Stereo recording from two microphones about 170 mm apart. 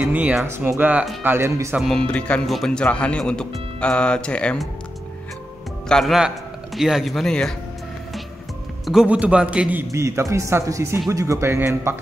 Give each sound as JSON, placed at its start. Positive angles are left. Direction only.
{"t": 0.0, "sound": "a man's voice", "side_deg": -10}
{"t": 1.8, "sound": "speech", "side_deg": 5}
{"t": 5.9, "sound": "a man's voice", "side_deg": 0}
{"t": 8.8, "sound": "a man's voice", "side_deg": -5}